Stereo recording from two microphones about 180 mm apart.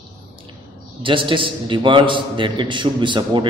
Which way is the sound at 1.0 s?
30° right (ahead or behind).